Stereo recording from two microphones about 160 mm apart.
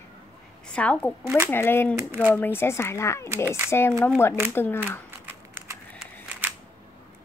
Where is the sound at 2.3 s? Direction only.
15° left (ahead or behind).